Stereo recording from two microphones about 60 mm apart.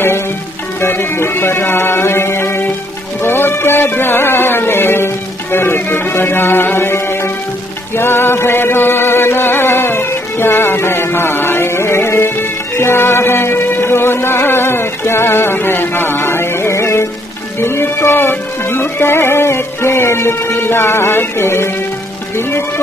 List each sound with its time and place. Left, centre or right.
0.7 s music: left